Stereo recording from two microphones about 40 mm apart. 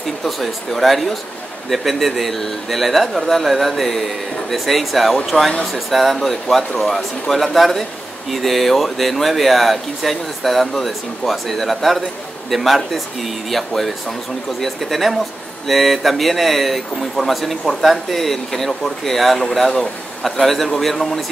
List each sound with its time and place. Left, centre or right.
0.2 s speech: centre
5.3 s speech: left
5.7 s speech: centre